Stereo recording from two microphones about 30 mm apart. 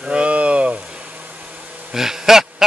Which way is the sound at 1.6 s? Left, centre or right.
Right.